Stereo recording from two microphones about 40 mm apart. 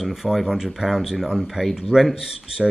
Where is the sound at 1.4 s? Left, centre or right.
Centre.